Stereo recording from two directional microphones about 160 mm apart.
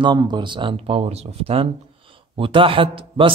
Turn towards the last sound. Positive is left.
turn(degrees=-35)  # may be behind; listen again after turning